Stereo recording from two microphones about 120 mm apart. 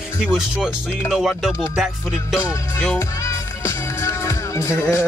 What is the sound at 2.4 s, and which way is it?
Music, 25° left (ahead or behind).